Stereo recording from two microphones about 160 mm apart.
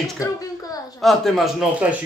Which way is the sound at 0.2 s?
20° left (ahead or behind).